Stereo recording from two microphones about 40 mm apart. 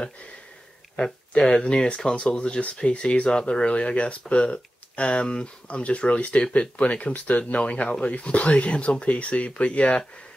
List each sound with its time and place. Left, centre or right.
1.6 s speech: left